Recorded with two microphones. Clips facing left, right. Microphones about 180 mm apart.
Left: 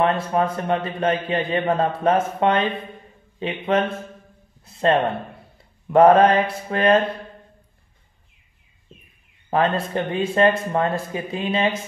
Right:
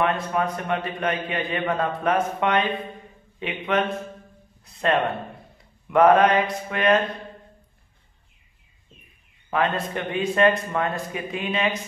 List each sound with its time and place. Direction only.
0.0 s a man's voice: 30° left (ahead or behind)
9.5 s a man's voice: 30° left (ahead or behind)